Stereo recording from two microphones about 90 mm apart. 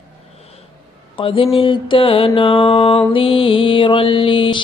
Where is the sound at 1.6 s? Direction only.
65° left (ahead or behind).